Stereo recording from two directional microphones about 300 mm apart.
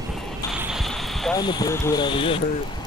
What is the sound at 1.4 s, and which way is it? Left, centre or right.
Speech, centre.